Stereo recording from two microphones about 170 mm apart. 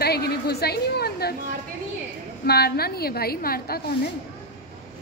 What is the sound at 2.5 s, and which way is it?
A woman's voice, 70° left (ahead or behind).